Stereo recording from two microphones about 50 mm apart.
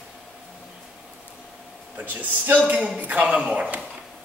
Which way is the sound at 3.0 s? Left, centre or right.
Right.